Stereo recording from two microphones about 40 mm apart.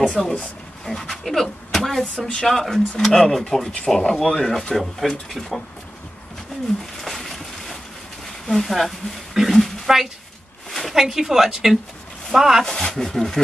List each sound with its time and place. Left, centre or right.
0.1 s speech: centre
2.1 s speech: left
2.4 s speech: centre
7.0 s a sound: centre
8.5 s a woman's voice: centre
10.7 s a sound: centre
11.0 s a woman's voice: centre
12.6 s speech: centre